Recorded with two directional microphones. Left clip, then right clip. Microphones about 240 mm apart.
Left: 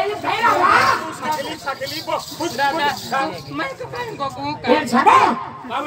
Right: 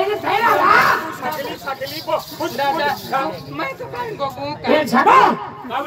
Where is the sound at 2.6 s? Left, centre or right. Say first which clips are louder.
Even; centre.